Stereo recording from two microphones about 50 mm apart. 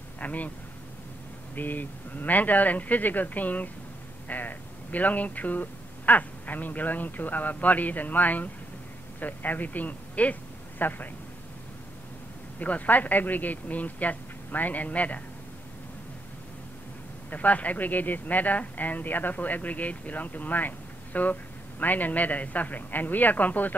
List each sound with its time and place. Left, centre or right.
0.2 s a sound: left
1.5 s speech: left
12.5 s speech: left
17.3 s speech: left